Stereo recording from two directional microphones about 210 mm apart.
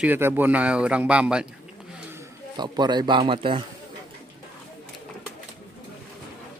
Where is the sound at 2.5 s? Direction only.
20° right (ahead or behind).